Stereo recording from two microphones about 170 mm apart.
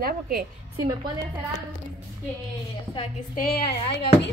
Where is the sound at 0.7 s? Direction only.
20° right (ahead or behind).